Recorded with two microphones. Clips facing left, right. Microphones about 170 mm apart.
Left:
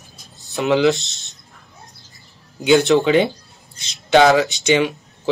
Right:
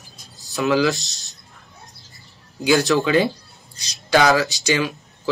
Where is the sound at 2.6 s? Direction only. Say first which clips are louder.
Left 4 dB; 20° left (ahead or behind).